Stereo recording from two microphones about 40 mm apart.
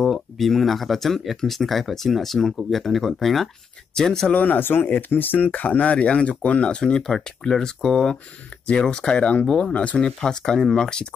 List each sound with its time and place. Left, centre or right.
0.0 s speech: centre
4.3 s speech: left
4.6 s speech: left
5.5 s speech: left
7.1 s speech: centre